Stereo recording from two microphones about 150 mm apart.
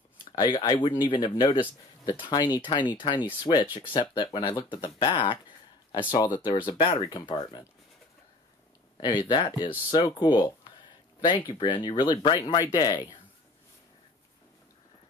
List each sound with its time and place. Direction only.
0.4 s speech: 30° left (ahead or behind)
9.0 s speech: 30° left (ahead or behind)